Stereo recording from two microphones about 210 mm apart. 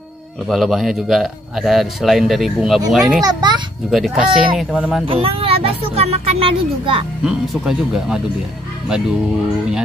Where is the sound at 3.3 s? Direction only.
20° right (ahead or behind).